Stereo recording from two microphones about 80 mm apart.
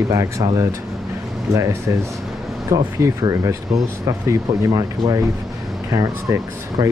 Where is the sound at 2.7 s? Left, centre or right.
Right.